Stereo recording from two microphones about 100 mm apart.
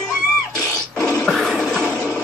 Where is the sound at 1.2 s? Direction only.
5° left (ahead or behind).